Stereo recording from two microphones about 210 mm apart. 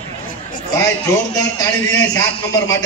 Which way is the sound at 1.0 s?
15° left (ahead or behind).